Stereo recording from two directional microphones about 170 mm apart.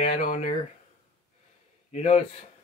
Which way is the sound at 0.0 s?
40° left (ahead or behind).